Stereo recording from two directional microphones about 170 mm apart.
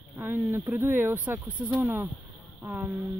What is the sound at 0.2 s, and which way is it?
Speech, 10° right (ahead or behind).